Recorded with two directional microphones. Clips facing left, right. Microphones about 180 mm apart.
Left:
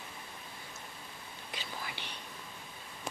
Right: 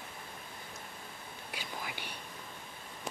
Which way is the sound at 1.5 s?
10° right (ahead or behind).